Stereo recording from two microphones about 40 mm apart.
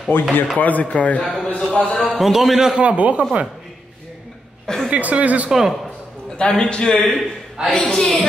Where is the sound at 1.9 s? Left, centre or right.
Centre.